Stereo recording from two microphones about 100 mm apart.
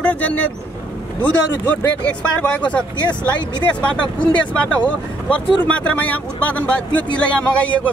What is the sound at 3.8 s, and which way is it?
Speech, 10° left (ahead or behind).